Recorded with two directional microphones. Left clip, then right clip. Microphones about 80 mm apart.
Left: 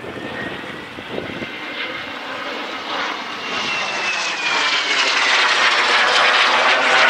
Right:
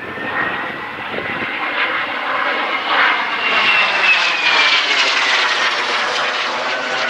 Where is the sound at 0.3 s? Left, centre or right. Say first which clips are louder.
Right 11 dB; right.